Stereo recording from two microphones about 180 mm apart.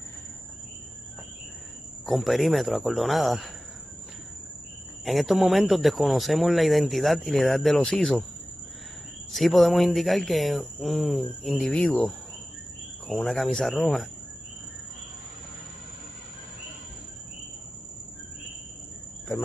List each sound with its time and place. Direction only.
2.0 s speech: centre (ahead or behind)
5.0 s speech: centre (ahead or behind)
9.3 s speech: centre (ahead or behind)